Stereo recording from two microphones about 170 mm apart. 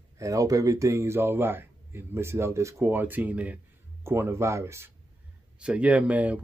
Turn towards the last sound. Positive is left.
turn(degrees=-10)  # may be behind; listen again after turning